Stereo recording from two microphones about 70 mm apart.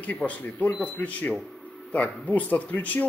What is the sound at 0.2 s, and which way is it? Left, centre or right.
Speech, centre.